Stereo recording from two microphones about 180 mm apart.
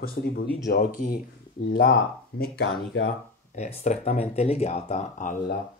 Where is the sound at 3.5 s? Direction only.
40° left (ahead or behind).